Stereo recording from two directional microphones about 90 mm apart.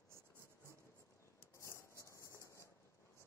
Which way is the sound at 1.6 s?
35° left (ahead or behind).